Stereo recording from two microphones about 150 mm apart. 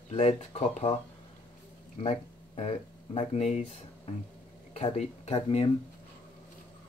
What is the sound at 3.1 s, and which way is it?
Speech, 45° left (ahead or behind).